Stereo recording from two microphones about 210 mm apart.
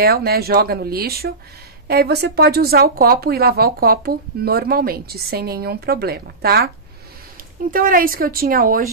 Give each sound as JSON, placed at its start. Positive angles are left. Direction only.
{"t": 0.0, "sound": "speech", "side_deg": -45}
{"t": 7.7, "sound": "speech", "side_deg": -40}